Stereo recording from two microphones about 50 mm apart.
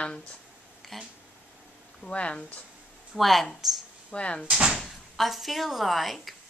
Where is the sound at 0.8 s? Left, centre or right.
Centre.